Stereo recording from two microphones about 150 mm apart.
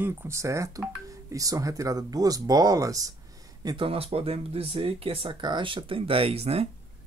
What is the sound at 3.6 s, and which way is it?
Speech, 35° right (ahead or behind).